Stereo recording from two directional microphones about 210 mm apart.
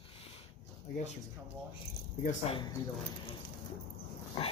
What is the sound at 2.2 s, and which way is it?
Speech, 25° left (ahead or behind).